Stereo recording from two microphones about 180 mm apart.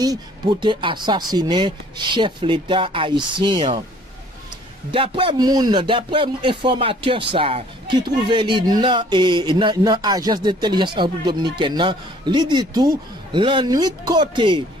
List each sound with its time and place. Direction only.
0.0 s speech: 20° right (ahead or behind)
4.9 s speech: 30° right (ahead or behind)